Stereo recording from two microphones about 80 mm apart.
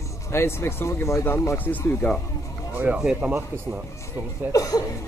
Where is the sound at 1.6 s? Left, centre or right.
Left.